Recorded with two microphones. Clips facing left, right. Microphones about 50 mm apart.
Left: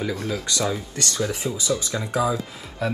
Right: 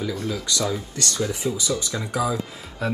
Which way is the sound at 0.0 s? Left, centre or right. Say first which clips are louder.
Left 1 dB; left.